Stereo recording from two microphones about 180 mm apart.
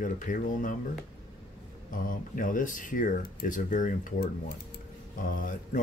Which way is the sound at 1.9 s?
50° left (ahead or behind).